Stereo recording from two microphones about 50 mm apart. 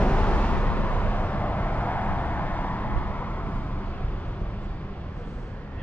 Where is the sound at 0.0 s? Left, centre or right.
Left.